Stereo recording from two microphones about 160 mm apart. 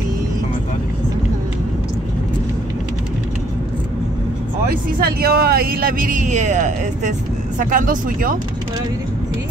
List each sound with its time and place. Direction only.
4.6 s speech: 75° right (ahead or behind)